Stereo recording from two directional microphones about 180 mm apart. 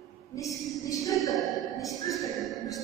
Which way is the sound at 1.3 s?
Centre (ahead or behind).